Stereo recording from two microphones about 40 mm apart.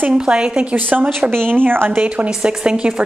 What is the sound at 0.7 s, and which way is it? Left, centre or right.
Speech, right.